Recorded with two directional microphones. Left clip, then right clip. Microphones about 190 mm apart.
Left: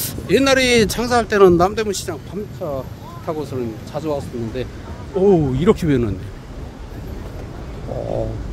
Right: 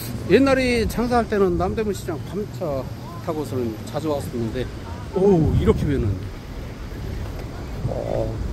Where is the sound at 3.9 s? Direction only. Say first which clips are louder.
Left 3 dB; 20° left (ahead or behind).